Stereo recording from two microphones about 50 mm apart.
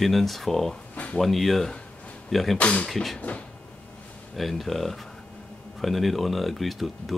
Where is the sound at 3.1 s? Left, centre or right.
Left.